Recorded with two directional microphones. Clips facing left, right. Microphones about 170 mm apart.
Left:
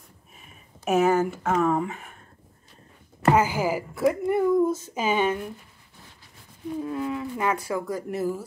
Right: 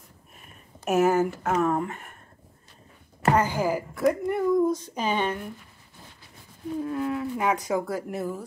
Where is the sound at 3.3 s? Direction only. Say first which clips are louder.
Left 1 dB; 5° left (ahead or behind).